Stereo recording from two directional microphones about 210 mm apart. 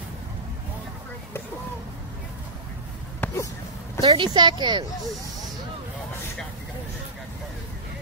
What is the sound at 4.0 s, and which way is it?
Speech, 20° right (ahead or behind).